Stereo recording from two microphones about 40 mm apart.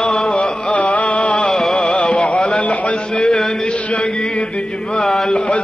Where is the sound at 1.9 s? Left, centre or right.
Left.